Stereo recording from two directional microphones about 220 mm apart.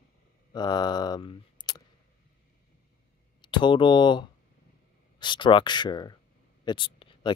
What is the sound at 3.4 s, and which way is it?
Speech, 20° left (ahead or behind).